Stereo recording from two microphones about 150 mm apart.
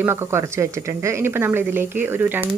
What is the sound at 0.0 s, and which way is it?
Speech, 15° right (ahead or behind).